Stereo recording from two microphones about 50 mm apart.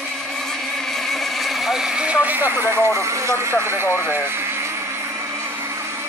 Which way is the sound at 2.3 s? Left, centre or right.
Right.